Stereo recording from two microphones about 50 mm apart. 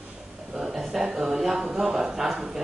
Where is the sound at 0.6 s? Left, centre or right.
Centre.